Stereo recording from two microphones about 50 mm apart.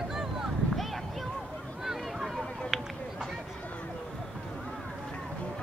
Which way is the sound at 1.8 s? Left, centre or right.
Centre.